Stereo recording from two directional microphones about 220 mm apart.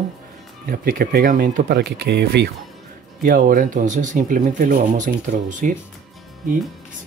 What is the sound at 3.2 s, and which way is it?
Speech, 40° right (ahead or behind).